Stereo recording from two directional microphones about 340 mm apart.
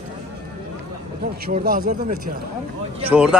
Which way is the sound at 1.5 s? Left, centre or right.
Right.